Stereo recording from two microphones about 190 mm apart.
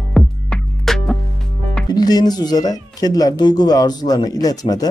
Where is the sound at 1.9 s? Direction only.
20° left (ahead or behind).